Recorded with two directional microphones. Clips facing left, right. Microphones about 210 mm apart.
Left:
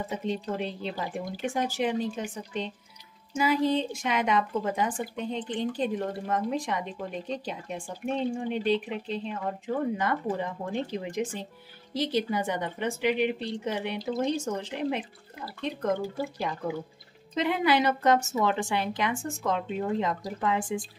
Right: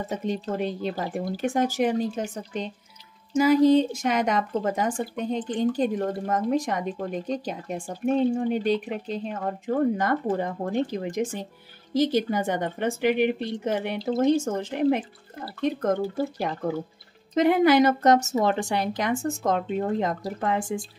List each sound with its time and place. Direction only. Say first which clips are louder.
0.1 s a woman's voice: right 4 dB; 45° right (ahead or behind)